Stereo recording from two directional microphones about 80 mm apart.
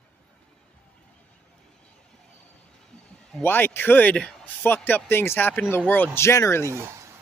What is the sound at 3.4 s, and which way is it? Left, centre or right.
Speech, left.